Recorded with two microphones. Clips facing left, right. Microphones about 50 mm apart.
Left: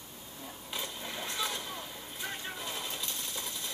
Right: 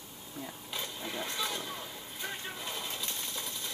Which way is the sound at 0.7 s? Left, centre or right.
Centre.